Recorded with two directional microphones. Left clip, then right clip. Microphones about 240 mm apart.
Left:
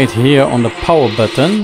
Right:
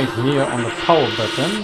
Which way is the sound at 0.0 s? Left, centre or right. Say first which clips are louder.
Left 8 dB; left.